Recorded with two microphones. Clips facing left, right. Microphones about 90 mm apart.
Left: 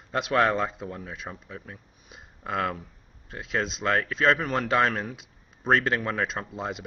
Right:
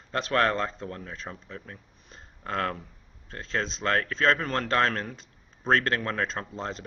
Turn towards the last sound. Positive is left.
turn(degrees=5)  # may be behind; listen again after turning